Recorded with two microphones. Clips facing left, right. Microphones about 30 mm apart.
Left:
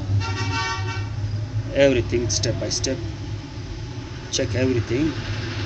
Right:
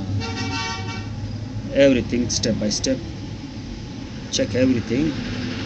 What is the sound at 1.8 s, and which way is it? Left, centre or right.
Speech, centre.